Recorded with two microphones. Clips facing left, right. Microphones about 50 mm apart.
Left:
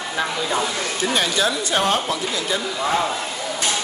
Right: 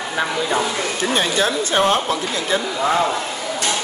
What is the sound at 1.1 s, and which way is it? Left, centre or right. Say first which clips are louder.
Speech: right 2 dB; right.